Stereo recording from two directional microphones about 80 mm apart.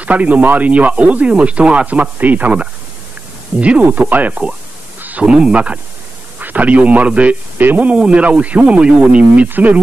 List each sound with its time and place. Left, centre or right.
0.0 s a man's voice: centre